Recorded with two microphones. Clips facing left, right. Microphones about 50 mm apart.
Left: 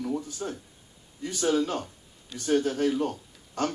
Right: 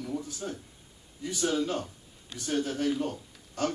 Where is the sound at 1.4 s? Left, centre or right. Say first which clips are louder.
Left 3 dB; left.